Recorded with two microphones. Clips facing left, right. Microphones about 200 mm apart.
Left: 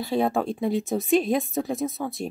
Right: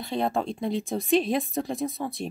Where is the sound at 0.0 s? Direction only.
5° left (ahead or behind).